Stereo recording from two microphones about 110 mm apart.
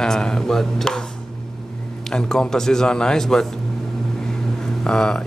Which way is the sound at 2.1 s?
5° left (ahead or behind).